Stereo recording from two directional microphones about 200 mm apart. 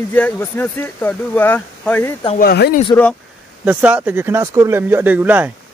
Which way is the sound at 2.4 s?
50° left (ahead or behind).